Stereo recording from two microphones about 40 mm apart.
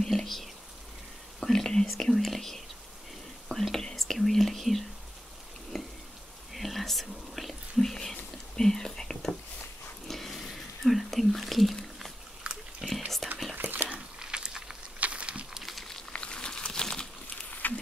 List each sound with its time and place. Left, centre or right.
0.0 s whispering: centre
2.1 s speech: centre
5.7 s raindrop: centre
6.5 s whispering: centre
7.9 s whispering: centre
10.0 s a sound: centre
12.4 s water: right
12.8 s whispering: centre
13.6 s dog: right
14.2 s a sound: right
15.0 s a sound: right
15.6 s boiling: centre
16.1 s a sound: left
17.6 s wild animals: left